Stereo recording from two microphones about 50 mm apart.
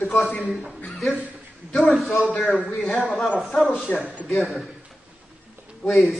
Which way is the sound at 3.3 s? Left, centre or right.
Centre.